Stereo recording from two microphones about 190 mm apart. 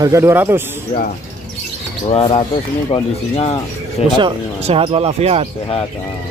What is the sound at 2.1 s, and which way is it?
Speech, 30° left (ahead or behind).